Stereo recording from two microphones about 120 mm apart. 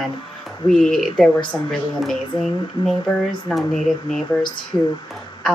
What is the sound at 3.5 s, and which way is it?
Speech, 5° left (ahead or behind).